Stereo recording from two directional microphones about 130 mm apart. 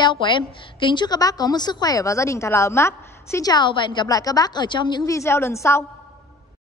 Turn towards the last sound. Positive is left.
turn(degrees=20)  # may be behind; listen again after turning